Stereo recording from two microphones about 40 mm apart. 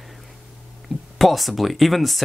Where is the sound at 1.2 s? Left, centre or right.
Centre.